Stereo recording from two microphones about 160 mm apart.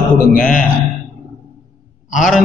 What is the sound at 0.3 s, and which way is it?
Speech, 55° left (ahead or behind).